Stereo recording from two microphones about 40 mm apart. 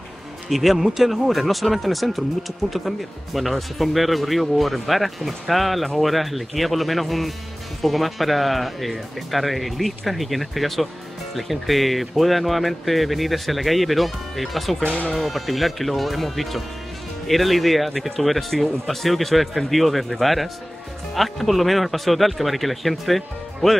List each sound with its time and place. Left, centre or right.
0.5 s speech: centre
14.9 s speech: left
15.1 s speech: centre